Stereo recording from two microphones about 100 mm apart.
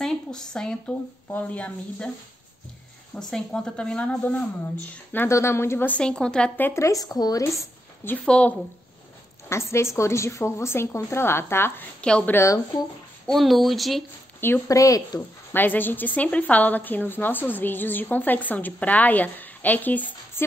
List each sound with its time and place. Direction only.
0.0 s a woman's voice: 5° left (ahead or behind)
3.2 s a woman's voice: 5° left (ahead or behind); by 7.6 s 35° left (ahead or behind)
8.3 s a woman's voice: 10° left (ahead or behind)
9.5 s speech: 25° left (ahead or behind)
12.0 s a woman's voice: 10° left (ahead or behind)
12.4 s speech: 30° left (ahead or behind)
13.3 s speech: centre (ahead or behind)
14.4 s speech: 20° left (ahead or behind)
14.8 s speech: 35° left (ahead or behind)
15.5 s a woman's voice: 20° left (ahead or behind)